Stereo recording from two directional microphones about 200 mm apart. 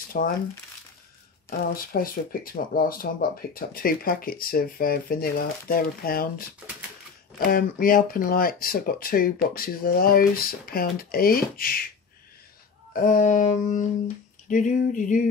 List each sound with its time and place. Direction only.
0.1 s speech: 45° left (ahead or behind)
1.7 s speech: 45° left (ahead or behind)
12.9 s humming: 40° left (ahead or behind)